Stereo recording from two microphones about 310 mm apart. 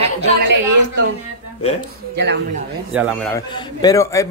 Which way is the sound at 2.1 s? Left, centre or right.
Right.